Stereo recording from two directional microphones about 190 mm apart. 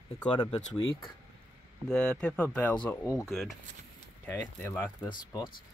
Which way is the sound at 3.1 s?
Centre (ahead or behind).